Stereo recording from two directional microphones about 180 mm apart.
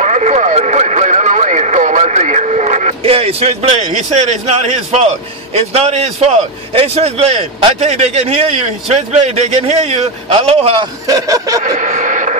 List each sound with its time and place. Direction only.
0.0 s a man's voice: 40° right (ahead or behind)
11.1 s speech: 20° right (ahead or behind)
11.6 s a sound: 45° right (ahead or behind)